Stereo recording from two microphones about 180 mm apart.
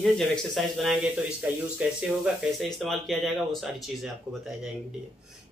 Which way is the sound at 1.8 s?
5° right (ahead or behind).